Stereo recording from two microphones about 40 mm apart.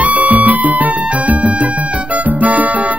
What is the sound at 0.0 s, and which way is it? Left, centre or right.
Music, right.